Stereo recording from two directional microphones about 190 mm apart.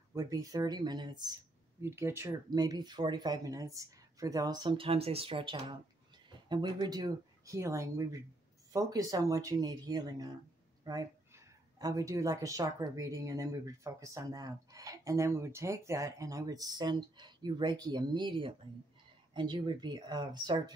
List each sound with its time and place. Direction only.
0.1 s speech: 20° right (ahead or behind)